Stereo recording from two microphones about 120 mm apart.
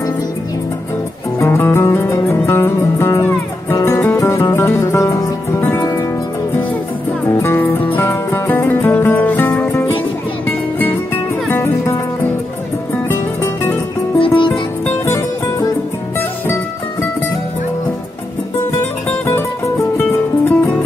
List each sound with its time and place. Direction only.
1.4 s music: 20° left (ahead or behind)
5.6 s music: 15° left (ahead or behind)
7.2 s music: 20° left (ahead or behind)
11.4 s music: 20° left (ahead or behind)
13.1 s music: 20° left (ahead or behind)
14.2 s music: 45° left (ahead or behind)
15.0 s music: 25° left (ahead or behind)
18.8 s music: 20° left (ahead or behind)